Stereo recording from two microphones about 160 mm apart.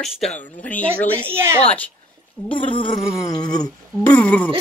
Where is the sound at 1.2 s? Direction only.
15° right (ahead or behind).